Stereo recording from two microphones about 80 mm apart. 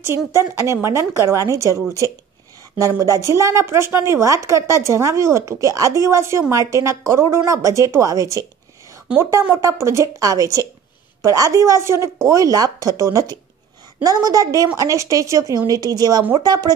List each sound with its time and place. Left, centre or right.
0.0 s a woman's voice: right
3.3 s a woman's voice: right
9.6 s a woman's voice: right
12.3 s speech: right